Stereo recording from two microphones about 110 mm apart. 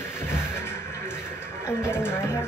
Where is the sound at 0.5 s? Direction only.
20° left (ahead or behind).